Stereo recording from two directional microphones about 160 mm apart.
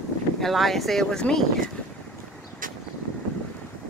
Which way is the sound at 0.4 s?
Centre (ahead or behind).